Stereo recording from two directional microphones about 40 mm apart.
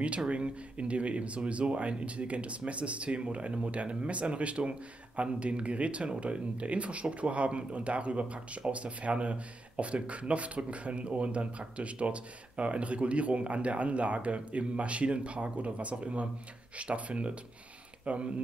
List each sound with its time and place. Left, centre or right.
0.3 s speech: right